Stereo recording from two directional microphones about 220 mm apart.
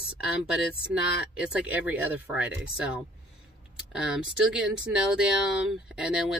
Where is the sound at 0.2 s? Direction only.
5° right (ahead or behind).